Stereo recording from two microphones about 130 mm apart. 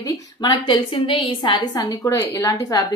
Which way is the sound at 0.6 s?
40° left (ahead or behind).